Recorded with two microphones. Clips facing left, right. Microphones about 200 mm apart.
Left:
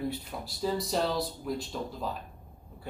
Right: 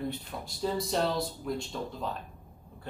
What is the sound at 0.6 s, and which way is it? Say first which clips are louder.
Speech: even; centre (ahead or behind).